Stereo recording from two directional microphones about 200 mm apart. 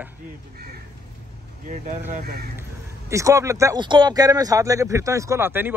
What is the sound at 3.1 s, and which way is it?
Speech, 15° right (ahead or behind).